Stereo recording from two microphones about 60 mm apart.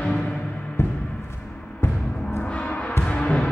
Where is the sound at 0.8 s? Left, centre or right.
Left.